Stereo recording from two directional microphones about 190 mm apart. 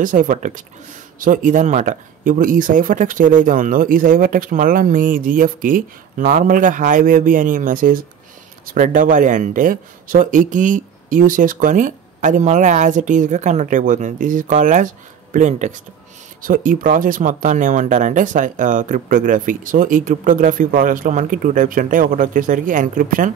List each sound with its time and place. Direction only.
0.0 s speech: 45° right (ahead or behind)